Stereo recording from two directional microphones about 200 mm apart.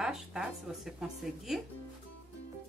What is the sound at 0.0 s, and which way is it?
Speech, 5° right (ahead or behind).